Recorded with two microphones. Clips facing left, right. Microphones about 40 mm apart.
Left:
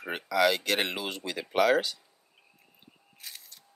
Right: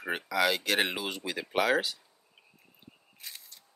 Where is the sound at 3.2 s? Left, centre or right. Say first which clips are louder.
Even; centre.